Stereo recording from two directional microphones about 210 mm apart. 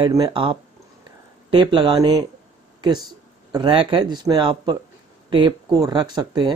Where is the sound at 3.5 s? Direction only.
25° right (ahead or behind).